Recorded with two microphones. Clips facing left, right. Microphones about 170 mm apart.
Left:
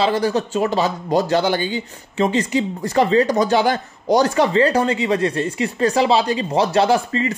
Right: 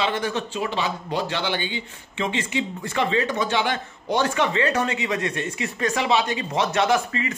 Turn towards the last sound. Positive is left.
turn(degrees=30)  # may be behind; listen again after turning